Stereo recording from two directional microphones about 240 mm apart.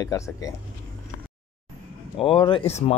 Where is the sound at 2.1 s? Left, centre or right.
Left.